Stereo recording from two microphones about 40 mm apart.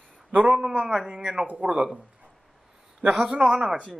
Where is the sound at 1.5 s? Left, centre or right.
Right.